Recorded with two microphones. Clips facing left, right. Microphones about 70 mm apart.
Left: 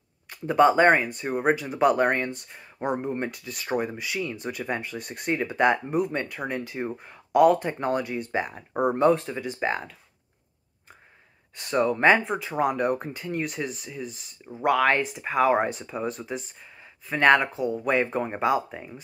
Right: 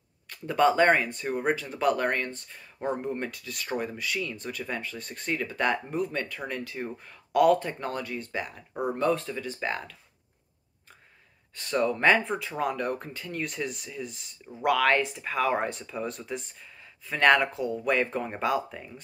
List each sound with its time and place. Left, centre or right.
0.3 s speech: centre
11.5 s speech: centre
14.0 s speech: centre
14.7 s speech: centre
16.1 s speech: centre
16.5 s speech: centre